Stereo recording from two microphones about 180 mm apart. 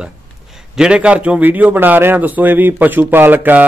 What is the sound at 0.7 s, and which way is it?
A man's voice, 5° right (ahead or behind).